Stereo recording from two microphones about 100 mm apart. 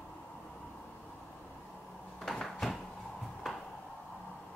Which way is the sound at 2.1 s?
Centre (ahead or behind).